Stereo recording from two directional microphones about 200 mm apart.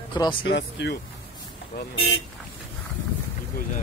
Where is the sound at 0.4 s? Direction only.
65° left (ahead or behind).